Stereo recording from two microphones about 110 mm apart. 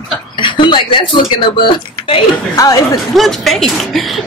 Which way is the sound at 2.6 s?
30° left (ahead or behind).